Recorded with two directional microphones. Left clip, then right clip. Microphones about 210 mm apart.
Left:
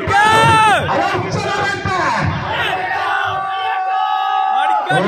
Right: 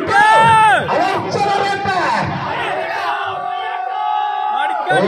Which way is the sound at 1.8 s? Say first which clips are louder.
Even; 45° right (ahead or behind).